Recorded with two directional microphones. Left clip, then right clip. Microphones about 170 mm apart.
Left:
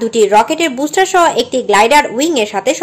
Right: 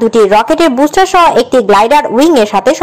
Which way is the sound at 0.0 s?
20° right (ahead or behind).